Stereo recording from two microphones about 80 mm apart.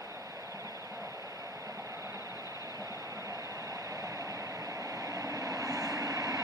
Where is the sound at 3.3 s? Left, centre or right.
Right.